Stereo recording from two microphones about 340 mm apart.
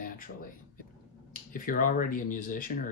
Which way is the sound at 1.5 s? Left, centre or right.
Left.